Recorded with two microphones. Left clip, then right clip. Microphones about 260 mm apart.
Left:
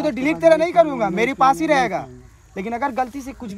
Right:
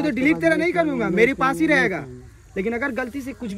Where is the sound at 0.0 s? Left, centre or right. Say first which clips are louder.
Left 3 dB; left.